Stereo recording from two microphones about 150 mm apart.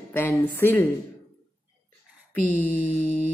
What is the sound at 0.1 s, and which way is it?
Speech, 15° left (ahead or behind).